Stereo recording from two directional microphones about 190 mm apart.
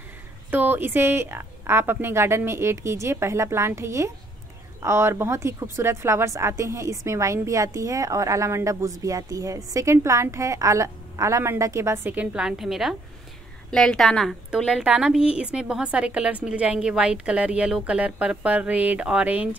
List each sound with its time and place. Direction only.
0.5 s a woman's voice: 10° right (ahead or behind)